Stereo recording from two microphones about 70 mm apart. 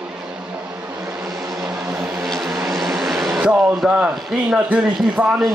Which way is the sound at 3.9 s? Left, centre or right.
Centre.